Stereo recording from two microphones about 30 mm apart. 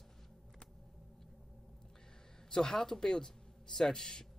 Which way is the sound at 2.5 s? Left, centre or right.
Left.